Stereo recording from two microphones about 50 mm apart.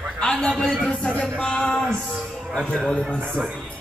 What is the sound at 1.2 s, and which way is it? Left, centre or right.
Music, centre.